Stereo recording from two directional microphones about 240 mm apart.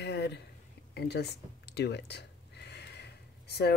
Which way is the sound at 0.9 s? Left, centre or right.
Left.